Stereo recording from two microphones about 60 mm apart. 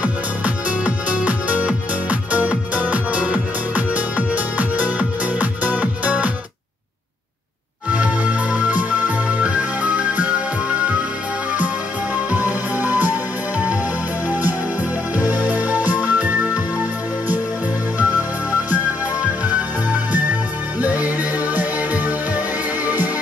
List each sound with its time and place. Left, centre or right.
0.7 s music: right
7.9 s music: right
12.3 s music: right
15.1 s music: right
20.8 s music: right